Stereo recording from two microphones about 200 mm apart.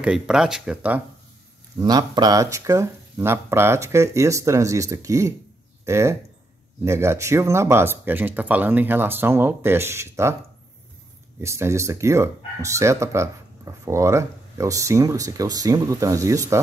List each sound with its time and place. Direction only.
0.0 s speech: 5° right (ahead or behind)
1.8 s speech: 20° right (ahead or behind)
11.4 s speech: 15° right (ahead or behind)